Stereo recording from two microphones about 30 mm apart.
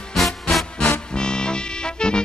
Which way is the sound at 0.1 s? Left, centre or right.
Centre.